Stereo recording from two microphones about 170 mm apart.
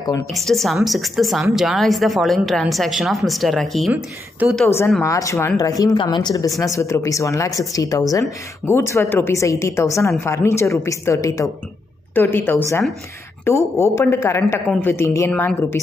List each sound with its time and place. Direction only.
0.3 s a woman's voice: centre (ahead or behind)
3.9 s speech: 10° right (ahead or behind)
4.6 s a woman's voice: 15° left (ahead or behind)